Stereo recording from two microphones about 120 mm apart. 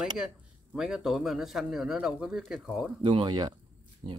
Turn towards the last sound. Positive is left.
turn(degrees=-40)  # may be behind; listen again after turning